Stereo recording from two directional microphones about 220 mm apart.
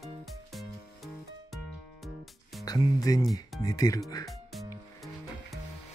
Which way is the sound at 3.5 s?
Centre (ahead or behind).